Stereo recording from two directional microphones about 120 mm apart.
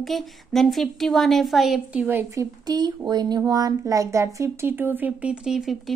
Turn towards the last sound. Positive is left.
turn(degrees=-5)  # may be behind; listen again after turning